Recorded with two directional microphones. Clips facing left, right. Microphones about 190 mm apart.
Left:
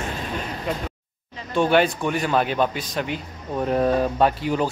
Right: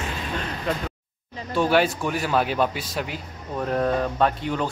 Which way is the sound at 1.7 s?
5° right (ahead or behind).